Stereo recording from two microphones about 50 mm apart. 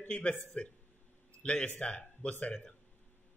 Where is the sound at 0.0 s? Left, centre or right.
Left.